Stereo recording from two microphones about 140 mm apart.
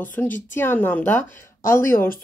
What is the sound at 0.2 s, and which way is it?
Speech, 15° left (ahead or behind).